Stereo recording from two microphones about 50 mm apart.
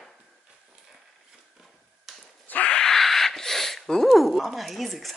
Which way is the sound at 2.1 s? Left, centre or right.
Centre.